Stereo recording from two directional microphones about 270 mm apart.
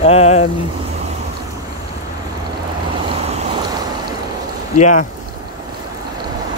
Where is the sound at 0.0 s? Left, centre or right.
Left.